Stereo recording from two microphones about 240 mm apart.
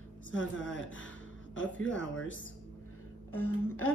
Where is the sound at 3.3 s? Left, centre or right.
Left.